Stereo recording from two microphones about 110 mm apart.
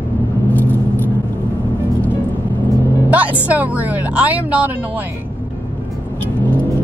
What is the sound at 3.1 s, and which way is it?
Speech, 15° right (ahead or behind).